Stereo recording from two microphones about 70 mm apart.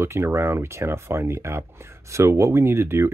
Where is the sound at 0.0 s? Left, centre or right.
Right.